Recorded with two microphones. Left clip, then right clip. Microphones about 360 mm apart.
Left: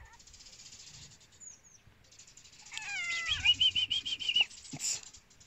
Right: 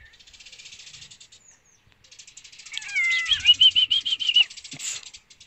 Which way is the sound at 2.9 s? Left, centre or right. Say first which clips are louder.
Right 12 dB; centre.